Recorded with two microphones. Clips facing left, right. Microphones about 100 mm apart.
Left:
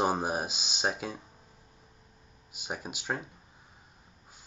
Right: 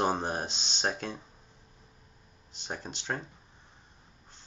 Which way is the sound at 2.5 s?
10° left (ahead or behind).